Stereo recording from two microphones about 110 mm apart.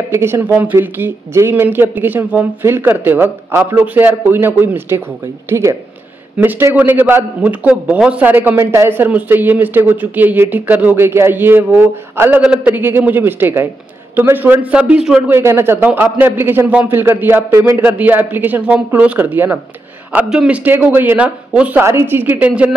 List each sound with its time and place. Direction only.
0.1 s a man's voice: 20° right (ahead or behind); by 15.2 s 5° right (ahead or behind)
15.2 s a man's voice: 20° right (ahead or behind)